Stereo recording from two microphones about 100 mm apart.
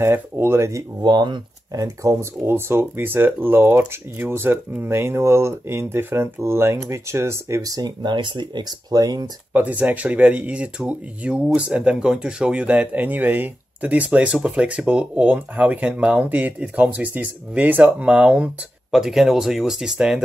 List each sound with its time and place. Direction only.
0.0 s speech: 25° right (ahead or behind)
1.0 s speech: 50° right (ahead or behind)
1.7 s speech: 35° right (ahead or behind)
9.5 s speech: 15° right (ahead or behind)